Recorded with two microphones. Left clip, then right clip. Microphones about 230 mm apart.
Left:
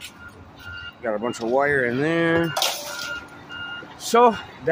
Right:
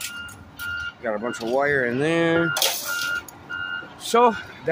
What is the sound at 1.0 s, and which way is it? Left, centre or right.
Speech, centre.